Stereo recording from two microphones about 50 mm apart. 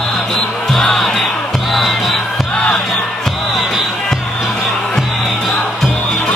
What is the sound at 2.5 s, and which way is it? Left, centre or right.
Music, left.